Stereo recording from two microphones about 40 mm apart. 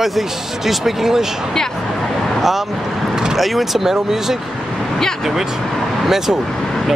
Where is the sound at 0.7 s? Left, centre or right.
Centre.